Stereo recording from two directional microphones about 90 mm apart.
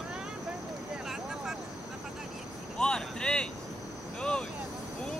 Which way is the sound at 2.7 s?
10° left (ahead or behind).